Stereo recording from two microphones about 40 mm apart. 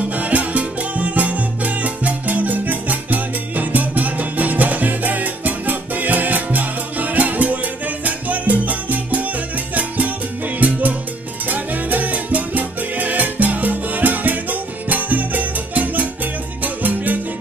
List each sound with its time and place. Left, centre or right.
0.1 s music: right
8.0 s salsa music: right
9.8 s music: right
11.4 s salsa music: right
16.6 s music: right